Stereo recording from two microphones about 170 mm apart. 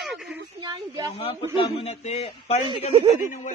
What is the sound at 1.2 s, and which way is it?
A man's voice, 35° left (ahead or behind).